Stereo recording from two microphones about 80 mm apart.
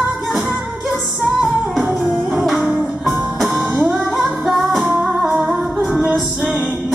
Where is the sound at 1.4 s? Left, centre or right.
Centre.